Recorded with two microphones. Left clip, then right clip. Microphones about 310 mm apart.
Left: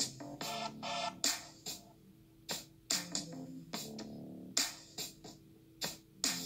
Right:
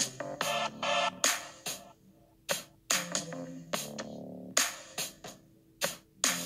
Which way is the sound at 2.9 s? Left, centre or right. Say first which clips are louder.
Right 6 dB; right.